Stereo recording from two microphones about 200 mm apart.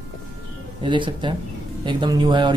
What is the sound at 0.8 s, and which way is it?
Speech, 25° right (ahead or behind).